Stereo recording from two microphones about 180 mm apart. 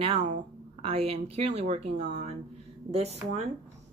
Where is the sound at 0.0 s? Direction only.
40° right (ahead or behind).